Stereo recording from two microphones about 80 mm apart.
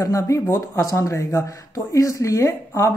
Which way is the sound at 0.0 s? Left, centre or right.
Left.